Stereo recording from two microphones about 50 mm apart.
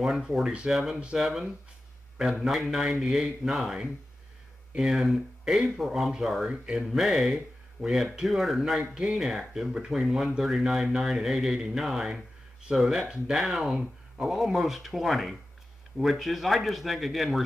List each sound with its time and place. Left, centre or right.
0.0 s speech: centre
2.7 s speech: centre
4.7 s speech: centre
6.5 s speech: centre
6.9 s speech: centre
8.6 s speech: centre